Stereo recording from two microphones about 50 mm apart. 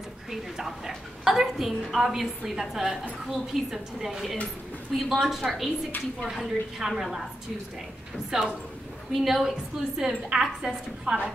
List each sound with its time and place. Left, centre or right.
0.7 s a woman's voice: centre
8.3 s a woman's voice: centre
11.1 s a woman's voice: right